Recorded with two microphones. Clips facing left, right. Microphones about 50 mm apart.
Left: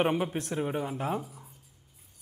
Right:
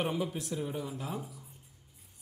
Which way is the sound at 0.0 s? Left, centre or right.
Left.